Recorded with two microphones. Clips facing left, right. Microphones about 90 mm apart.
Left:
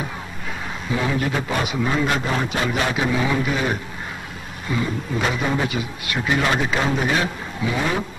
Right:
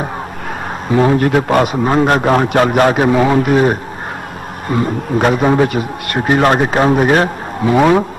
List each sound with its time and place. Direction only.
0.8 s a man's voice: 50° right (ahead or behind)